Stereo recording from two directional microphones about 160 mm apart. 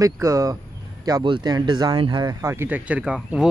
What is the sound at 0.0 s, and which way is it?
Speech, 20° right (ahead or behind).